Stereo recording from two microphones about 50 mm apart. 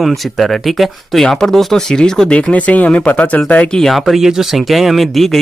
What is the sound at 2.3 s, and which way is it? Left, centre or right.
Speech, left.